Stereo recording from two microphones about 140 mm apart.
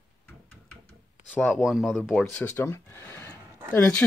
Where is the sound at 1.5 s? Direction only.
5° right (ahead or behind).